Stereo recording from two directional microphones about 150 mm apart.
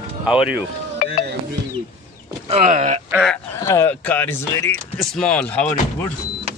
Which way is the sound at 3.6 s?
15° left (ahead or behind).